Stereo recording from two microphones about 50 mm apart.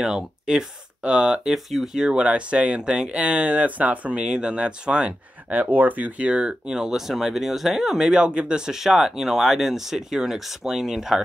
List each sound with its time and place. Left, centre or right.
0.0 s speech: centre
1.5 s speech: centre
2.0 s speech: centre
5.5 s speech: right; by 11.1 s centre